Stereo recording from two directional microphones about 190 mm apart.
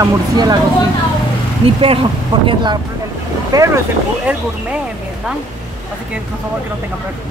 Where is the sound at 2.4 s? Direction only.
25° right (ahead or behind).